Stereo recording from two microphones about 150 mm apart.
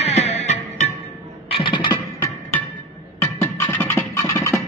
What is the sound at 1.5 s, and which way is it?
Music, 35° left (ahead or behind).